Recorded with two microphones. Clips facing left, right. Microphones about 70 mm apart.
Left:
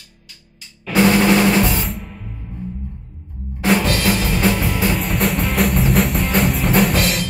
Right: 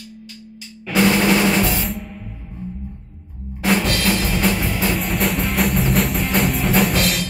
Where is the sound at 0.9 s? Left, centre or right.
Centre.